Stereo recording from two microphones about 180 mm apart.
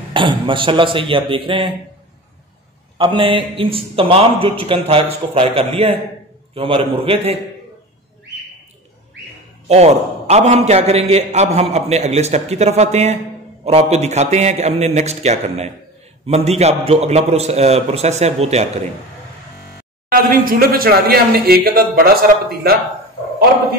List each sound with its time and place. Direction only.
0.1 s a man's voice: 30° right (ahead or behind)
3.0 s a man's voice: 30° right (ahead or behind)
9.7 s a man's voice: 35° right (ahead or behind)
20.1 s speech: 55° right (ahead or behind)